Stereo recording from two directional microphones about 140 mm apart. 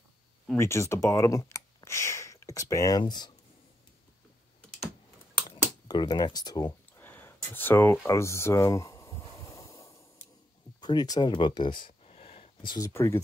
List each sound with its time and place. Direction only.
0.6 s speech: 20° left (ahead or behind)
5.9 s speech: 30° left (ahead or behind)
7.0 s a sound: 15° left (ahead or behind); by 12.7 s 40° left (ahead or behind)
12.7 s speech: 20° left (ahead or behind)